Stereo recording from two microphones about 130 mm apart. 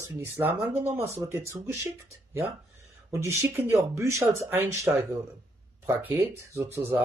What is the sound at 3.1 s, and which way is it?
Speech, 20° right (ahead or behind).